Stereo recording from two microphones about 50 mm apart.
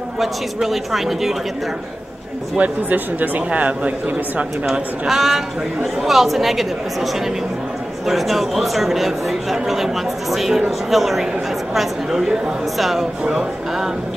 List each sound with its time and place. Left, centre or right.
0.2 s speech: centre
2.6 s speech: right
5.0 s speech: centre
8.1 s speech: centre
13.2 s speech: centre